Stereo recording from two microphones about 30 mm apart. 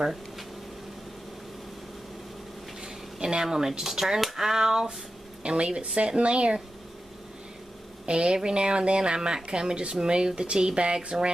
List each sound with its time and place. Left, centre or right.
2.8 s a sound: right
5.4 s speech: right
8.1 s speech: right